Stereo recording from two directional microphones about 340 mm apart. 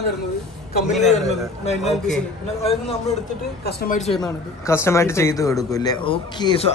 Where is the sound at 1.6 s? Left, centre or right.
Centre.